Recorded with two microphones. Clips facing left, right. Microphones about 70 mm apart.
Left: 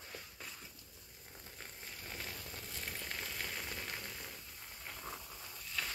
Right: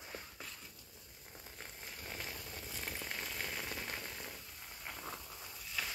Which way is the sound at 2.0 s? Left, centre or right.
Centre.